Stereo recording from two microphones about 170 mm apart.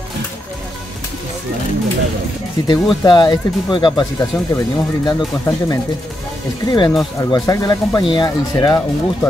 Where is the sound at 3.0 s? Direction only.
25° left (ahead or behind).